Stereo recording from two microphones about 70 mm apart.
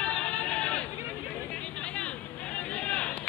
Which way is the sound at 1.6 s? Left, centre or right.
Centre.